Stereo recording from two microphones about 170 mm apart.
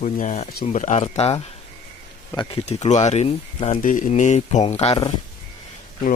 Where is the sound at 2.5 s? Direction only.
40° left (ahead or behind).